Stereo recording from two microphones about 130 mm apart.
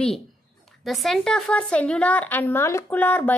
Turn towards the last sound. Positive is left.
turn(degrees=15)  # may be behind; listen again after turning